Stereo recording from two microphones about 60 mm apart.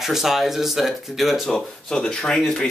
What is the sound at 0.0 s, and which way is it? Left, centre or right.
Speech, centre.